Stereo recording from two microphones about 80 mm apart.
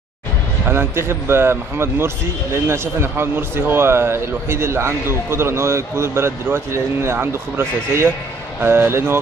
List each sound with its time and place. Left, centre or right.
0.7 s speech: right